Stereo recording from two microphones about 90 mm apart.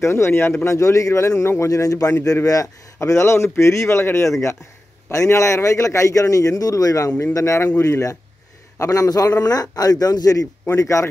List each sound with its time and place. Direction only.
0.0 s a man's voice: 30° left (ahead or behind)